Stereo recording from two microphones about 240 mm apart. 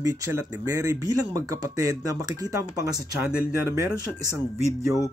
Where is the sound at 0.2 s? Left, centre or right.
Centre.